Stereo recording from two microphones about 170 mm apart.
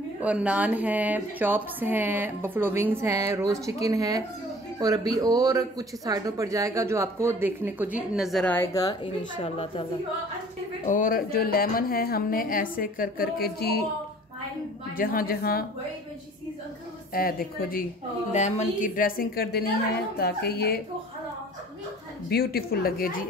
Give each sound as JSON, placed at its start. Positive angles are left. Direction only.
{"t": 0.2, "sound": "a woman's voice", "side_deg": -5}
{"t": 8.5, "sound": "a woman's voice", "side_deg": 15}
{"t": 9.4, "sound": "a woman's voice", "side_deg": 35}
{"t": 10.9, "sound": "a woman's voice", "side_deg": 55}
{"t": 15.0, "sound": "a woman's voice", "side_deg": 60}
{"t": 17.1, "sound": "a woman's voice", "side_deg": 60}
{"t": 18.3, "sound": "a woman's voice", "side_deg": 40}
{"t": 22.3, "sound": "a woman's voice", "side_deg": 65}